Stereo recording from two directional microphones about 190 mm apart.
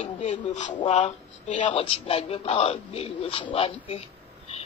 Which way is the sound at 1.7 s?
30° left (ahead or behind).